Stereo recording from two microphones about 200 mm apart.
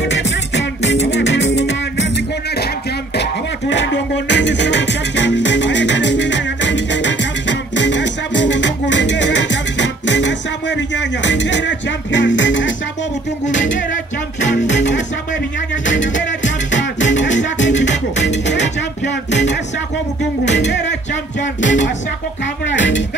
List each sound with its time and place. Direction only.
0.1 s music: 65° left (ahead or behind)
3.2 s music: 60° left (ahead or behind)
22.7 s cutlery: 65° left (ahead or behind)